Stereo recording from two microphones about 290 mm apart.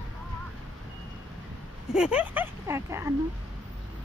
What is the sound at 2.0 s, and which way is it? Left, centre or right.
Speech, centre.